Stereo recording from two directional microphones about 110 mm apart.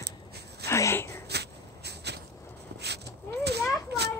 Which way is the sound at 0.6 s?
25° left (ahead or behind).